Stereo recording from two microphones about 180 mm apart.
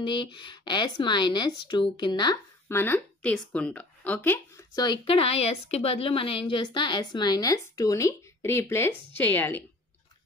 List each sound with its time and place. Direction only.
0.0 s speech: 25° left (ahead or behind)
2.7 s speech: 10° left (ahead or behind)